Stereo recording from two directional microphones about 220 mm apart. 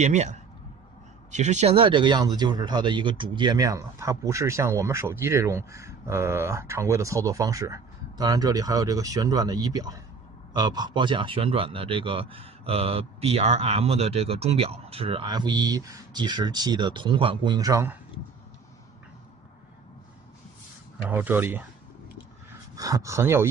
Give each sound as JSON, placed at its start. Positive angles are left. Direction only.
{"t": 0.0, "sound": "speech", "side_deg": -30}
{"t": 21.1, "sound": "speech", "side_deg": -10}
{"t": 22.8, "sound": "speech", "side_deg": -15}